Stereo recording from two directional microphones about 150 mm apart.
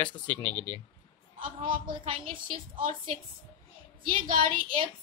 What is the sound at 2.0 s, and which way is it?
Speech, 60° right (ahead or behind).